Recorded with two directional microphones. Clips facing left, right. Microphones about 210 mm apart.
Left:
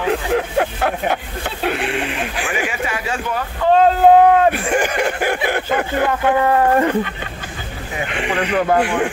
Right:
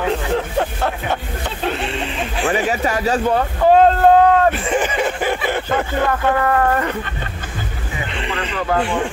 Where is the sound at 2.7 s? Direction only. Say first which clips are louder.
Right 5 dB; 40° right (ahead or behind).